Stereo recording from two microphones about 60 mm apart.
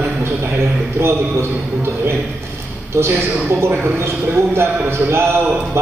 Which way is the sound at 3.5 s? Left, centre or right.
Right.